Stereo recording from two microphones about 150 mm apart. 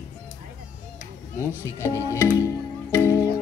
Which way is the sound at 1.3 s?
15° left (ahead or behind).